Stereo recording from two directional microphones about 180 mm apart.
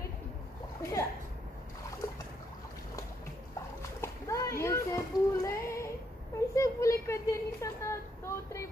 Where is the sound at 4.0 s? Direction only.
15° left (ahead or behind).